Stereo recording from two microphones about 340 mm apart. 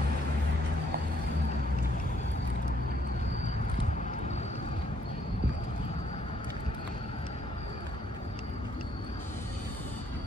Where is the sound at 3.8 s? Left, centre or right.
Left.